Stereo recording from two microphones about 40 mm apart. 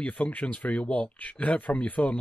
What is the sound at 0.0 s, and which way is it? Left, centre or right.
Speech, left.